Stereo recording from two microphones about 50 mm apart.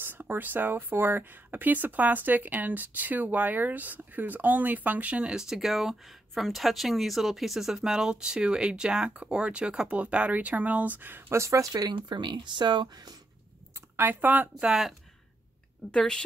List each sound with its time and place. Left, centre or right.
0.0 s speech: right
5.3 s speech: centre; by 11.3 s right
11.3 s speech: right
13.9 s speech: right
14.7 s speech: centre
15.9 s a woman's voice: centre